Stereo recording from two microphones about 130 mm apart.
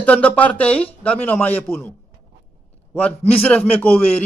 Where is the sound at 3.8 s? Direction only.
10° left (ahead or behind).